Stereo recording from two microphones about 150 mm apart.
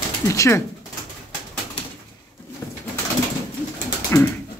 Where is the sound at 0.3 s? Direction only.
20° left (ahead or behind).